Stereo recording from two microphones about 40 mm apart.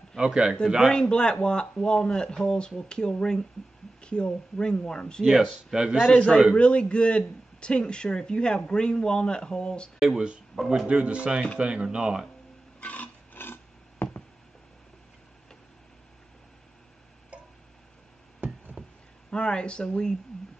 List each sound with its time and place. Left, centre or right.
0.2 s speech: right
0.9 s a man's voice: left
5.3 s speech: centre
6.1 s a man's voice: left
9.9 s speech: centre
10.9 s speech: right
12.8 s a sound: left
13.3 s a sound: left
18.8 s a sound: right
19.3 s a man's voice: left